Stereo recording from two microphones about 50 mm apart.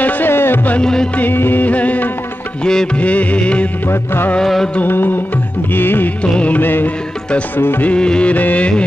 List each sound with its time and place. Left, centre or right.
0.0 s music: left
0.3 s music: left
0.7 s music: centre
1.3 s music: left
1.7 s music: left
2.6 s music: centre
3.0 s music of bollywood: left
3.9 s music: left
4.4 s music: centre
4.8 s music: left
6.2 s music of bollywood: left
6.5 s music: left
7.8 s music of bollywood: left